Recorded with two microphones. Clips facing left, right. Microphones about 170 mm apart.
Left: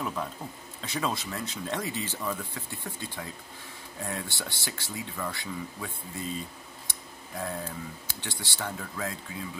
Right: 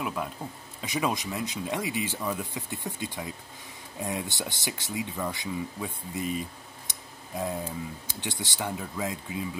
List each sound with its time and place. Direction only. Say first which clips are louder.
0.0 s speech: right 1 dB; 10° right (ahead or behind)